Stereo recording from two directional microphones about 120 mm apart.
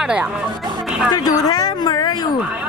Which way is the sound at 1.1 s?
30° left (ahead or behind).